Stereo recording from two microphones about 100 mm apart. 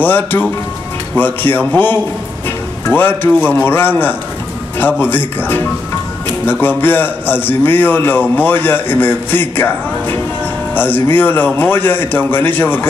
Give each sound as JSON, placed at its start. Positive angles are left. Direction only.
{"t": 0.0, "sound": "a man's voice", "side_deg": 20}